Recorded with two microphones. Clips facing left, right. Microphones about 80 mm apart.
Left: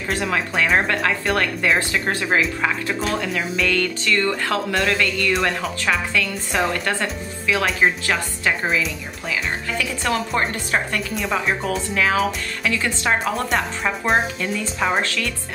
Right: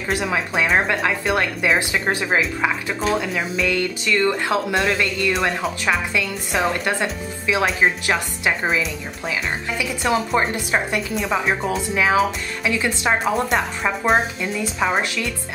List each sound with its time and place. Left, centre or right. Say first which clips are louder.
0.1 s a woman's voice: right 1 dB; centre
5.3 s speech: even; centre
6.1 s a woman's voice: even; centre
9.3 s speech: left 1 dB; centre
11.1 s speech: right 1 dB; centre
11.7 s speech: right 2 dB; centre
13.5 s speech: right 1 dB; centre